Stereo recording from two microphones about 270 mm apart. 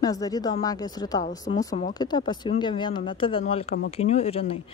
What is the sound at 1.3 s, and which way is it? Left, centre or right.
Speech, left.